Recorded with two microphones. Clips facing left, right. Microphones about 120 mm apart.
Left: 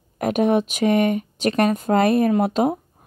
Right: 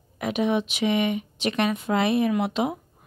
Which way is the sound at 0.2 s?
50° left (ahead or behind).